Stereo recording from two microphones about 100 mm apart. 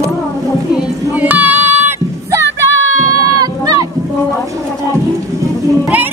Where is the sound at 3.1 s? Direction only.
40° right (ahead or behind).